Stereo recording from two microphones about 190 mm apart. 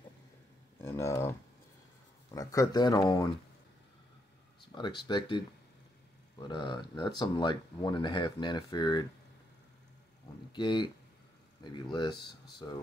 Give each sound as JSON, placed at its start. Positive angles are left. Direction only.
{"t": 0.8, "sound": "a sound", "side_deg": 15}
{"t": 2.3, "sound": "speech", "side_deg": 20}
{"t": 4.7, "sound": "speech", "side_deg": 25}
{"t": 6.4, "sound": "speech", "side_deg": 25}
{"t": 10.5, "sound": "speech", "side_deg": 25}